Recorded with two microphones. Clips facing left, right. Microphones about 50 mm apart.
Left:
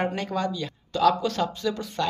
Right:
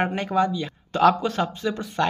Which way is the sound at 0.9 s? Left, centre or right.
Right.